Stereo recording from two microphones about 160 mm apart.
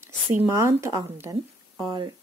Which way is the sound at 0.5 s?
20° right (ahead or behind).